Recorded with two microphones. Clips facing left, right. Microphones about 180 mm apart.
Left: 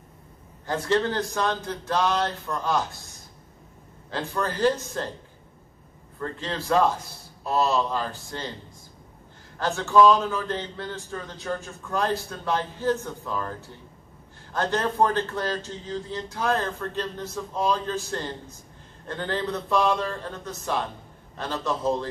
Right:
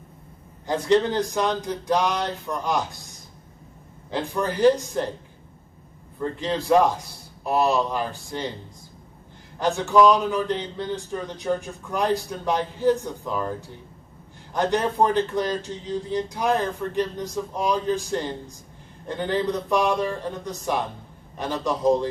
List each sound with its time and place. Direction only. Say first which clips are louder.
0.7 s a man's voice: right 4 dB; 15° right (ahead or behind)
4.1 s a man's voice: right 3 dB; 15° right (ahead or behind)
6.1 s a man's voice: right 5 dB; 15° right (ahead or behind)
9.6 s a man's voice: right 1 dB; 15° right (ahead or behind)